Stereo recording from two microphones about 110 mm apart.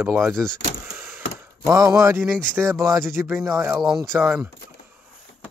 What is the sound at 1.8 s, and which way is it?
Speech, 25° right (ahead or behind).